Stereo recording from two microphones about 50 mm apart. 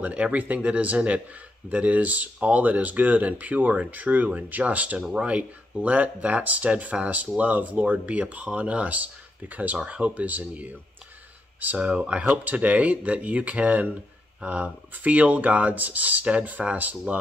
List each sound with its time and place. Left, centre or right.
0.0 s speech: right
11.8 s speech: right